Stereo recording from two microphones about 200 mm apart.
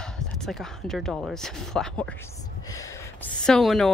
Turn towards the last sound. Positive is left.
turn(degrees=0)  # may be behind; listen again after turning